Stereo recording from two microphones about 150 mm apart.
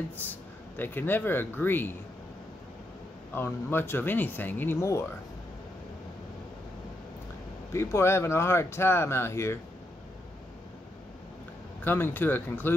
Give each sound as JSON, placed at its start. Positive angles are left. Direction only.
{"t": 0.2, "sound": "speech", "side_deg": 10}
{"t": 3.3, "sound": "speech", "side_deg": 15}
{"t": 7.7, "sound": "speech", "side_deg": 20}
{"t": 11.8, "sound": "speech", "side_deg": 15}